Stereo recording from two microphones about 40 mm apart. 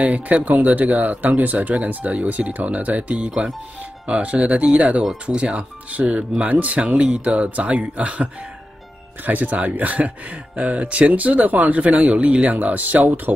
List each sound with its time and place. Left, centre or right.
0.0 s speech: right
12.4 s speech: right